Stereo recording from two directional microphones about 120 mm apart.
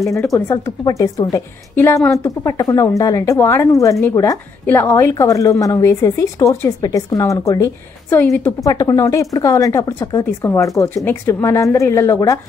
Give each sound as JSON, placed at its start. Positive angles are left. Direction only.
{"t": 0.1, "sound": "a woman's voice", "side_deg": 25}